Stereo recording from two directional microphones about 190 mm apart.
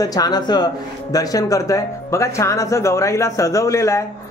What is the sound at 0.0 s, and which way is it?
Speech, 20° left (ahead or behind).